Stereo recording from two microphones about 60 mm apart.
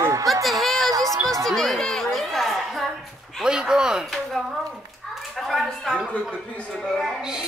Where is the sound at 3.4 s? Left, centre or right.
Centre.